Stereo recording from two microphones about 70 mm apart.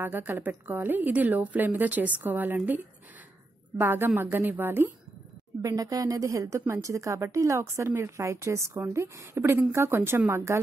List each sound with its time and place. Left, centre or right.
0.0 s a woman's voice: right
5.6 s a woman's voice: right